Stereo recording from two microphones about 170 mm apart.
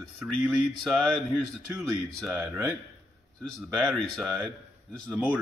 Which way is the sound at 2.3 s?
10° right (ahead or behind).